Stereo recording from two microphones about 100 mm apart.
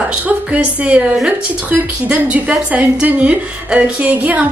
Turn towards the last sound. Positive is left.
turn(degrees=-15)  # may be behind; listen again after turning